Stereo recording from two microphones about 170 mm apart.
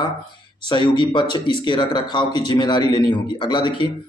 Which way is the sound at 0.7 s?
25° left (ahead or behind).